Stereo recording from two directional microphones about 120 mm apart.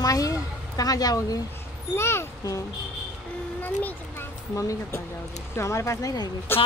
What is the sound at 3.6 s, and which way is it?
Speech, 15° left (ahead or behind).